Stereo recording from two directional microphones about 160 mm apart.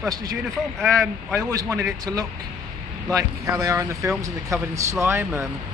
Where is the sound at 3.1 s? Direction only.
20° right (ahead or behind).